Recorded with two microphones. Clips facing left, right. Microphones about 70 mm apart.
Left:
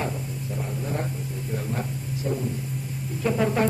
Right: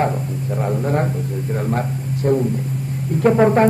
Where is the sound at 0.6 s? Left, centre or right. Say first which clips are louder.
Right 11 dB; right.